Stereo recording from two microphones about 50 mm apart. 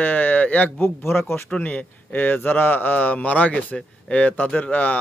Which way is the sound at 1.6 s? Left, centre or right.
Left.